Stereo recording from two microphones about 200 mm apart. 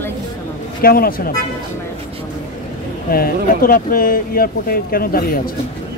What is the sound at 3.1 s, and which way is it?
Speech, 45° left (ahead or behind).